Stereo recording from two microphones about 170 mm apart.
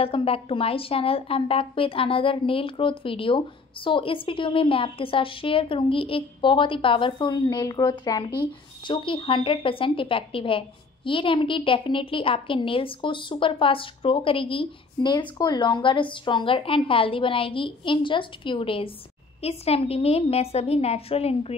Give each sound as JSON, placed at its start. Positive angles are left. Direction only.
{"t": 0.0, "sound": "a woman's voice", "side_deg": 35}